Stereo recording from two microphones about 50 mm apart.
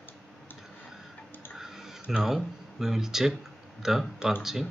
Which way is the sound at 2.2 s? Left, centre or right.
Centre.